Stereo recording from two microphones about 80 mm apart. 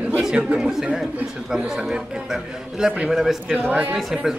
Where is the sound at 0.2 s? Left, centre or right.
Centre.